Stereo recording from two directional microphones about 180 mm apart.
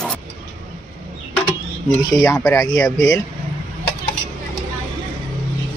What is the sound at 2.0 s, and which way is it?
Speech, 20° left (ahead or behind).